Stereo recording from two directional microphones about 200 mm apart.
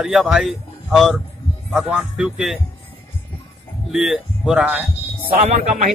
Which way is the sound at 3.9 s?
Centre (ahead or behind).